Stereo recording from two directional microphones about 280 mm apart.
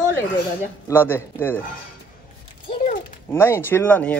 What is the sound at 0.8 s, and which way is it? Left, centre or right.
Speech, centre.